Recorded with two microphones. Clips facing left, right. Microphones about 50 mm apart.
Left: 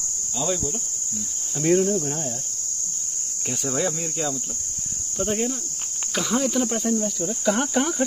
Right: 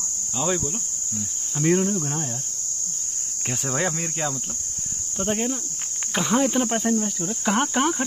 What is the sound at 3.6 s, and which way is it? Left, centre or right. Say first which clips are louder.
Speech: even; right.